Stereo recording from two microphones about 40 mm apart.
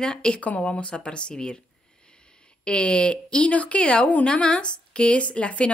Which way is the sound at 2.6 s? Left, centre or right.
Left.